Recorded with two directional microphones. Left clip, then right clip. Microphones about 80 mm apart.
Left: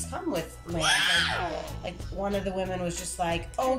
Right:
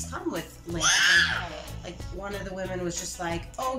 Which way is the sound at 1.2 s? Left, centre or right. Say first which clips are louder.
Even; left.